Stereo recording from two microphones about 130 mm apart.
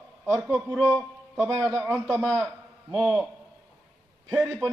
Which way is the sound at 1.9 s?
5° left (ahead or behind).